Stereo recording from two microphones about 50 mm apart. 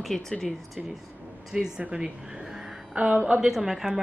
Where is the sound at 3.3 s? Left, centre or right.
Centre.